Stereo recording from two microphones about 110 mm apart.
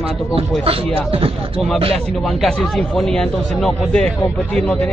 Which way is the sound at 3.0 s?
5° left (ahead or behind).